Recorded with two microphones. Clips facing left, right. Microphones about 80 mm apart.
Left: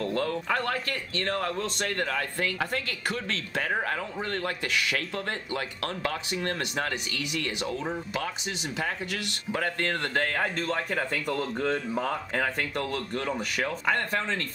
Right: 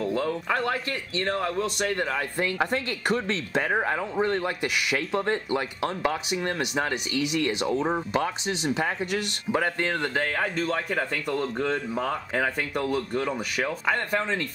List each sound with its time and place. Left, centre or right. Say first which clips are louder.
0.0 s a man's voice: right 2 dB; centre
9.6 s speech: right 2 dB; centre